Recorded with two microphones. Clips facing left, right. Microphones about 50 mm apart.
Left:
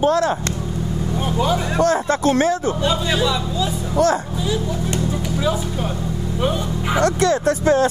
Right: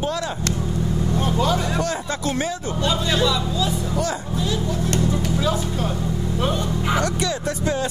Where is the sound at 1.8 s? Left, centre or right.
Left.